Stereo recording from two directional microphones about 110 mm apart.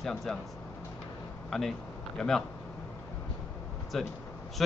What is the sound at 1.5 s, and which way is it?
Speech, centre (ahead or behind).